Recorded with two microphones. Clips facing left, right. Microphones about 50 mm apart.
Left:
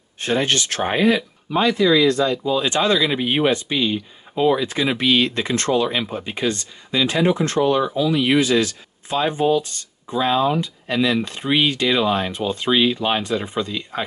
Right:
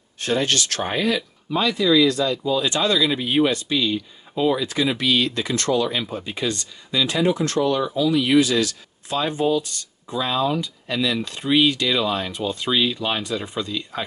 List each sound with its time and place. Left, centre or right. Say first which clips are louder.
0.2 s speech: left 1 dB; left